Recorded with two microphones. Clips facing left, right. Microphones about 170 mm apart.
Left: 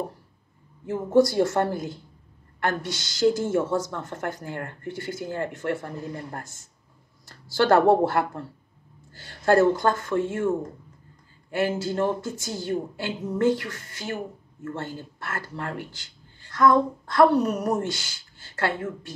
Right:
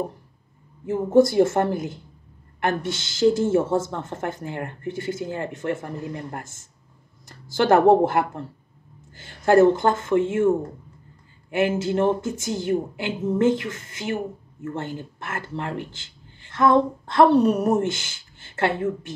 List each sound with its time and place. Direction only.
0.8 s speech: 20° right (ahead or behind)
11.8 s speech: 20° right (ahead or behind)